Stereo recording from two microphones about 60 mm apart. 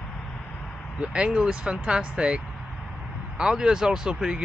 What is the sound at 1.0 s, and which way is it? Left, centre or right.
Speech, centre.